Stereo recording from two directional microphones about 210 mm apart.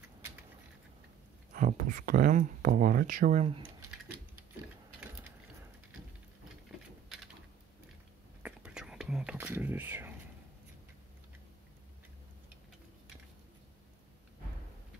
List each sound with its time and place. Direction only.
1.5 s speech: 40° right (ahead or behind)
8.4 s whispering: 5° right (ahead or behind)